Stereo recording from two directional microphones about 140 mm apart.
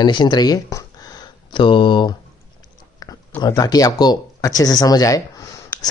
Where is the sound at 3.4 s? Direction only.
25° left (ahead or behind).